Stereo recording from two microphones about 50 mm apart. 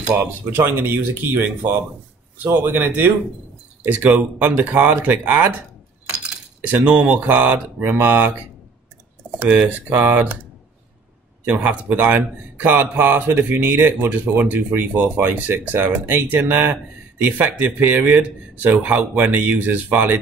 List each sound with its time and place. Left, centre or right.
0.0 s a man's voice: right
3.9 s a man's voice: right
6.8 s a man's voice: right
9.4 s a man's voice: right
11.4 s a man's voice: right